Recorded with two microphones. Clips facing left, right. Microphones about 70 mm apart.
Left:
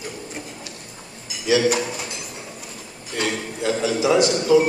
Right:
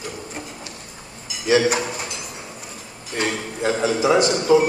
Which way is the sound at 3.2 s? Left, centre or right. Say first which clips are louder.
Right 1 dB; right.